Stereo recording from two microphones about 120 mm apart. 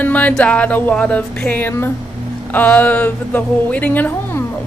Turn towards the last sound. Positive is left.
turn(degrees=15)  # may be behind; listen again after turning